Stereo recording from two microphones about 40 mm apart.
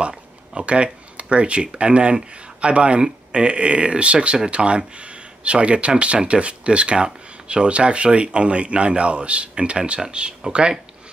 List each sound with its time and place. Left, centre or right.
0.6 s speech: right